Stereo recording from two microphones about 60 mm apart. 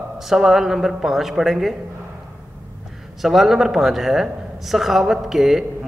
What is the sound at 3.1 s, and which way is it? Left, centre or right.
A man's voice, centre.